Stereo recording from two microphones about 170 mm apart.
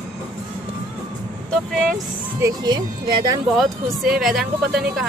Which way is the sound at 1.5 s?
5° left (ahead or behind).